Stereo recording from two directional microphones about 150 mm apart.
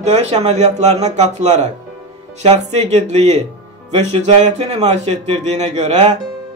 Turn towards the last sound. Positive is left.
turn(degrees=-45)  # may be behind; listen again after turning